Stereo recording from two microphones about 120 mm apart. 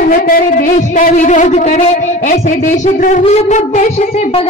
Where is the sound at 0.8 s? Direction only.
90° left.